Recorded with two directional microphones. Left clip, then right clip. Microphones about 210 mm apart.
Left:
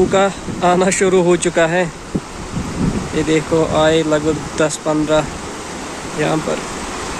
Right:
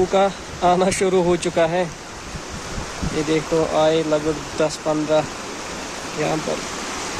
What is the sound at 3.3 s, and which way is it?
Speech, 5° right (ahead or behind).